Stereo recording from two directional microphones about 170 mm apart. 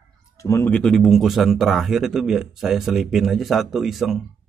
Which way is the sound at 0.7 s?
5° left (ahead or behind).